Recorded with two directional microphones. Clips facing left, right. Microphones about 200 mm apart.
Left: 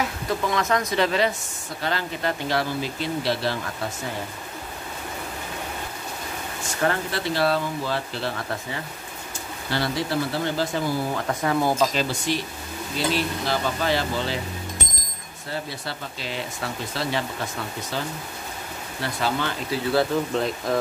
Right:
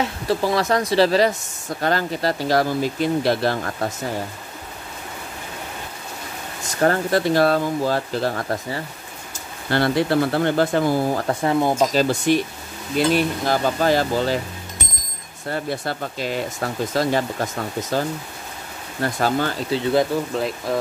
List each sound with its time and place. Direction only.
0.0 s speech: 30° right (ahead or behind); by 3.9 s 50° right (ahead or behind)
6.8 s speech: 45° right (ahead or behind)
9.7 s speech: 55° right (ahead or behind)
11.1 s speech: 35° right (ahead or behind)
13.1 s speech: 45° right (ahead or behind)
15.5 s speech: 50° right (ahead or behind)
19.7 s speech: 20° right (ahead or behind)
20.3 s speech: 5° right (ahead or behind)